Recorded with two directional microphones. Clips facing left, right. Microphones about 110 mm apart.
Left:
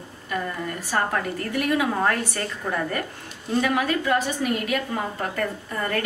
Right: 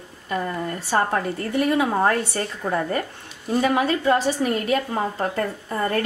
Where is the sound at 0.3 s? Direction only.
30° right (ahead or behind).